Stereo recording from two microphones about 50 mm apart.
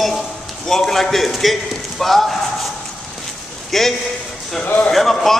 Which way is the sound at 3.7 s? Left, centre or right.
Centre.